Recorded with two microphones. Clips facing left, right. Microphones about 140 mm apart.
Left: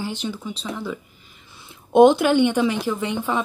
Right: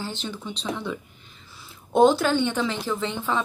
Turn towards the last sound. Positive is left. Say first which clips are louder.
# left 2 dB
turn(degrees=15)  # may be behind; listen again after turning